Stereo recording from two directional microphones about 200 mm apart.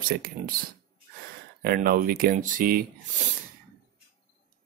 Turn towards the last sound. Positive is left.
turn(degrees=-45)  # may be behind; listen again after turning